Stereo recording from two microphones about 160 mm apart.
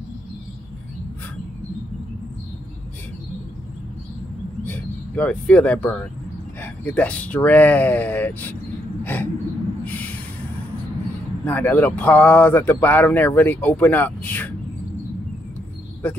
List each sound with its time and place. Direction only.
4.6 s speech: 10° left (ahead or behind)
9.0 s a sound: 10° left (ahead or behind)
11.4 s speech: 10° left (ahead or behind)